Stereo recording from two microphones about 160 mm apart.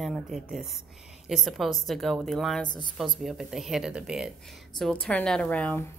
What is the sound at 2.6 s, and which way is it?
Speech, 25° left (ahead or behind).